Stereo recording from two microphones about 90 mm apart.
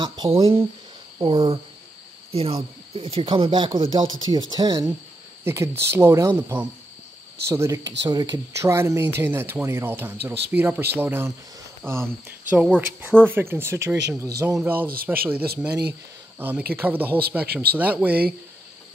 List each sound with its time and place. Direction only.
0.0 s speech: 60° right (ahead or behind); by 0.7 s 90° right
1.2 s speech: 70° right (ahead or behind)
2.3 s speech: 90° right; by 4.0 s 70° right (ahead or behind)
4.3 s speech: 55° right (ahead or behind)
5.4 s speech: 30° right (ahead or behind); by 8.4 s 50° right (ahead or behind)
8.5 s speech: 35° right (ahead or behind); by 18.1 s 20° right (ahead or behind)